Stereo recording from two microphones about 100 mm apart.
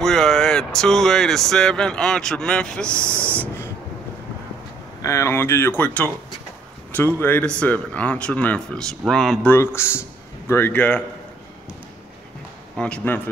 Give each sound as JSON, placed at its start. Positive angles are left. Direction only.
{"t": 0.0, "sound": "speech", "side_deg": 5}
{"t": 5.0, "sound": "speech", "side_deg": 30}
{"t": 9.5, "sound": "speech", "side_deg": 25}
{"t": 12.7, "sound": "speech", "side_deg": 10}